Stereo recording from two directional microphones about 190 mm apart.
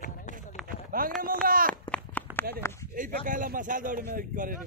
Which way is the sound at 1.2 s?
45° right (ahead or behind).